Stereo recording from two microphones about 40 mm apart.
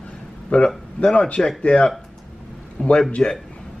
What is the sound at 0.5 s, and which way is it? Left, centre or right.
Speech, left.